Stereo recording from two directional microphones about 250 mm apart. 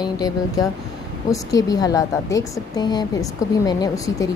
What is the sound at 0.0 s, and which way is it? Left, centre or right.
A woman's voice, centre.